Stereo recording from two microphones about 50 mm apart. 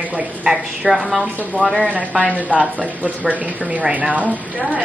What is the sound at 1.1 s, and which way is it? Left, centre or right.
Speech, right.